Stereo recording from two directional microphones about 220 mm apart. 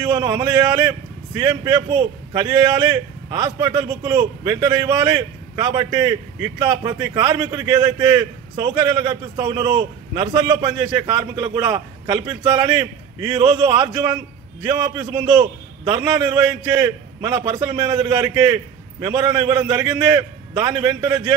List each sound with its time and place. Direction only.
0.0 s a man's voice: 15° right (ahead or behind)